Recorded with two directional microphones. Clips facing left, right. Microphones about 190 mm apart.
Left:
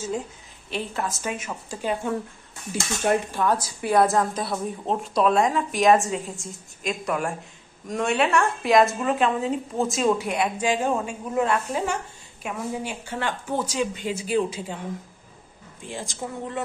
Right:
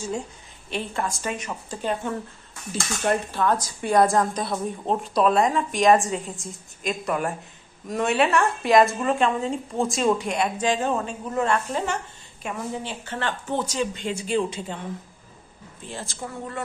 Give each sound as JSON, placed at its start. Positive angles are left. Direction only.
{"t": 0.7, "sound": "speech", "side_deg": 0}
{"t": 15.8, "sound": "speech", "side_deg": 15}